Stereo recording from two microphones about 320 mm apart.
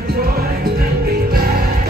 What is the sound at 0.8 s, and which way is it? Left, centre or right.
Music, right.